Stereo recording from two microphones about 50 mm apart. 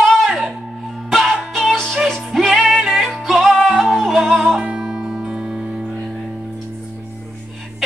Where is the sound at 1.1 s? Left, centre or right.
Centre.